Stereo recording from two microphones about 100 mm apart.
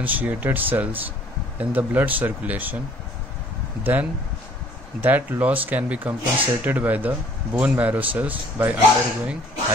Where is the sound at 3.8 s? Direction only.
20° right (ahead or behind).